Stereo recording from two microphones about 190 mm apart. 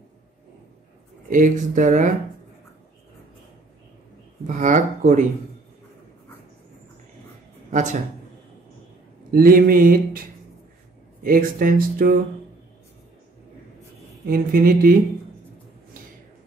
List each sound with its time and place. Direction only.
1.3 s speech: 40° right (ahead or behind)
4.5 s speech: 40° right (ahead or behind)
7.7 s speech: 40° right (ahead or behind)
9.3 s speech: 50° right (ahead or behind)
11.2 s speech: 50° right (ahead or behind)
14.2 s speech: 50° right (ahead or behind)